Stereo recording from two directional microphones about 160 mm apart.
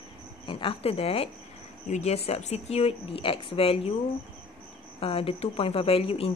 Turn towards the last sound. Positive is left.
turn(degrees=40)  # may be behind; listen again after turning